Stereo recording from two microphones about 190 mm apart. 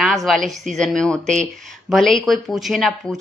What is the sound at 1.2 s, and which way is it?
Speech, 40° right (ahead or behind).